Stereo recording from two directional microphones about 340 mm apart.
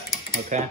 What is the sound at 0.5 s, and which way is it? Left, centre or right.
Speech, right.